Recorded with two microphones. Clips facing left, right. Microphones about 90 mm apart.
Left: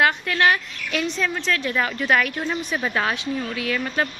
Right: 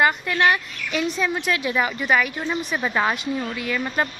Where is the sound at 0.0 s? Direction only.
Centre (ahead or behind).